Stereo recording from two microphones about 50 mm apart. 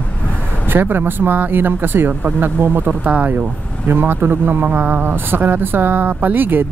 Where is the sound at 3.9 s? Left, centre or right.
Right.